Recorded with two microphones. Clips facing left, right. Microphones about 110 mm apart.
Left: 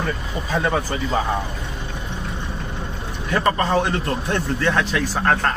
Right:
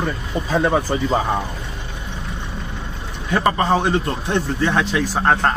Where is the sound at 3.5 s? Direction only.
25° right (ahead or behind).